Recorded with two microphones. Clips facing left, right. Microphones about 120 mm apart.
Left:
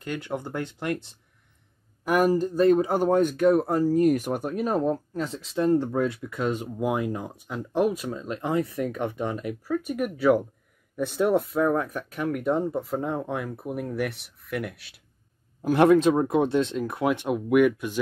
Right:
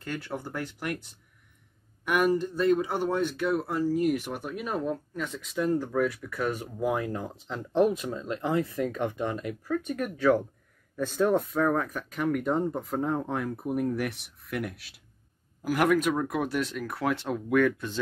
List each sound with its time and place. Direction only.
0.0 s speech: 20° left (ahead or behind)
12.3 s speech: centre (ahead or behind)
15.6 s speech: 25° left (ahead or behind)